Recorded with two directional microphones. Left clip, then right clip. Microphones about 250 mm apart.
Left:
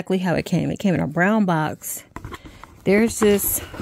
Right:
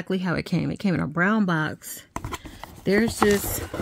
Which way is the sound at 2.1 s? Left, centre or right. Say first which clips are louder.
Right 8 dB; right.